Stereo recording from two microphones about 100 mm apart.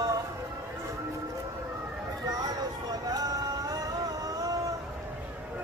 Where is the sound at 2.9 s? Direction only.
40° right (ahead or behind).